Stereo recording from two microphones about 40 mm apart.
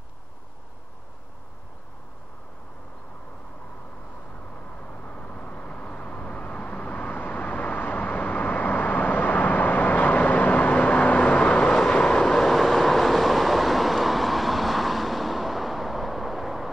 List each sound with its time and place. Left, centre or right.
4.9 s vehicle: left
12.3 s vehicle: centre